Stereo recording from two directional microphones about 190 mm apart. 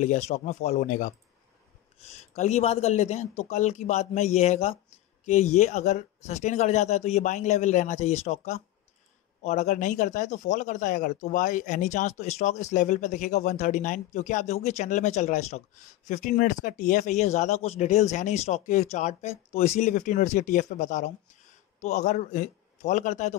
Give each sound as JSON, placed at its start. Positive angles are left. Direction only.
{"t": 0.0, "sound": "speech", "side_deg": 35}